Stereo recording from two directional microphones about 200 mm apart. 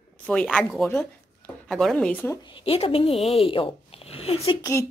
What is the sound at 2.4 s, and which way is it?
Speech, 25° left (ahead or behind).